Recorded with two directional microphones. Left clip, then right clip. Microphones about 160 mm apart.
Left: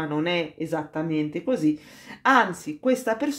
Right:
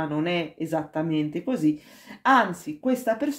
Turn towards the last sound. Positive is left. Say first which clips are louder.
# left 1 dB
turn(degrees=25)  # may be behind; listen again after turning